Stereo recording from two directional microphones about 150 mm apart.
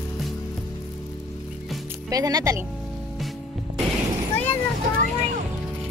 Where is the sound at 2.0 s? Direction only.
25° right (ahead or behind).